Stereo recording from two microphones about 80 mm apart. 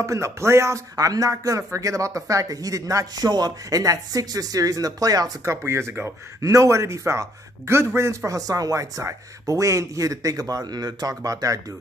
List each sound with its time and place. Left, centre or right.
0.0 s speech: right
5.4 s speech: right